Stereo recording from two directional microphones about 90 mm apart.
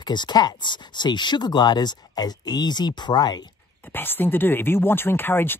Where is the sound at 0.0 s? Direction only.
55° left (ahead or behind).